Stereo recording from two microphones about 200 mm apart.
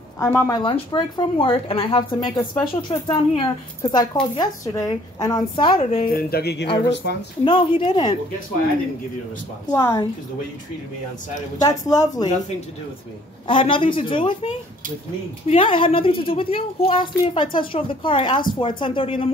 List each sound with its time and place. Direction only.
0.2 s speech: 15° left (ahead or behind)
0.7 s speech: 25° left (ahead or behind)
5.8 s speech: 35° left (ahead or behind); by 6.7 s 55° left (ahead or behind)
7.4 s speech: 25° left (ahead or behind)
9.7 s speech: 20° left (ahead or behind)
11.6 s speech: 20° left (ahead or behind)
13.5 s speech: 25° left (ahead or behind)